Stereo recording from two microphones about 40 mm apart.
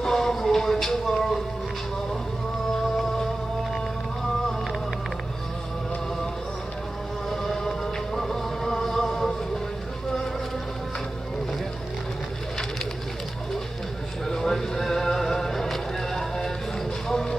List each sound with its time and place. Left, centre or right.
0.0 s a sound: centre
7.6 s music: centre
14.2 s music: centre